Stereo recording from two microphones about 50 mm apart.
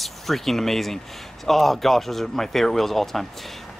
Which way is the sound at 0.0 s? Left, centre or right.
Centre.